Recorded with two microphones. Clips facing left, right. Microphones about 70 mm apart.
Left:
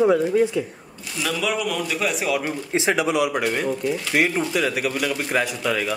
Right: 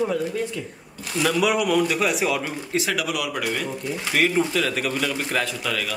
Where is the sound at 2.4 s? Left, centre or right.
Left.